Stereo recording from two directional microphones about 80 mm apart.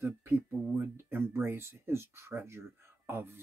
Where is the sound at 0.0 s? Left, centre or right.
Right.